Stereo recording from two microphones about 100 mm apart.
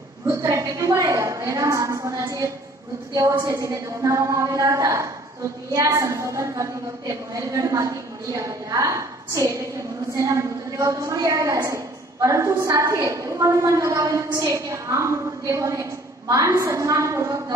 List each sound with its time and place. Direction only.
0.3 s a woman's voice: 35° right (ahead or behind)